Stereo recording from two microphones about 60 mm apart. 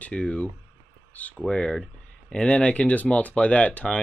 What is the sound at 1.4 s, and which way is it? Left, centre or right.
Speech, centre.